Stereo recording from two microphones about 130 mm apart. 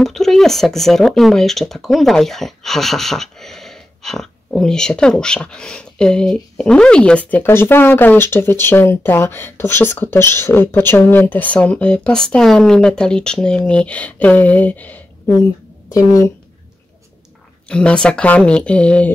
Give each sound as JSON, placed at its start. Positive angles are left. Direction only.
{"t": 0.0, "sound": "speech", "side_deg": 0}
{"t": 15.9, "sound": "a woman's voice", "side_deg": 25}
{"t": 17.6, "sound": "speech", "side_deg": 5}